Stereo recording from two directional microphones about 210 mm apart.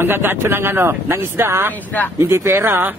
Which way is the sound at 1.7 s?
10° left (ahead or behind).